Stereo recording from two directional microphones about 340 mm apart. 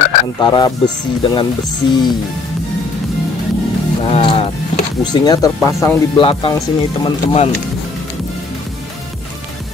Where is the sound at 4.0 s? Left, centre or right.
Centre.